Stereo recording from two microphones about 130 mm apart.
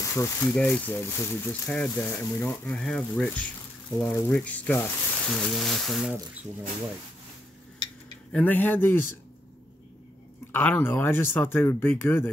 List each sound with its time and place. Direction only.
0.0 s speech: 20° left (ahead or behind); by 3.3 s 5° left (ahead or behind)
4.0 s speech: 20° left (ahead or behind); by 6.1 s centre (ahead or behind)
8.3 s speech: 10° left (ahead or behind)
10.5 s speech: 10° left (ahead or behind)